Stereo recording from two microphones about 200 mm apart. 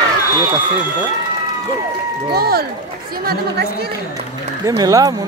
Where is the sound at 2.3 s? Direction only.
50° right (ahead or behind).